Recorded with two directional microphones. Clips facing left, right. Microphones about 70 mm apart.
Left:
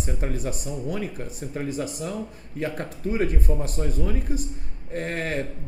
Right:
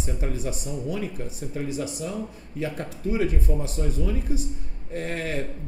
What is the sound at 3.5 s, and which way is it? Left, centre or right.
Speech, left.